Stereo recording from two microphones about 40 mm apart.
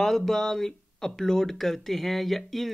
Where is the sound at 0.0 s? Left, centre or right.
Centre.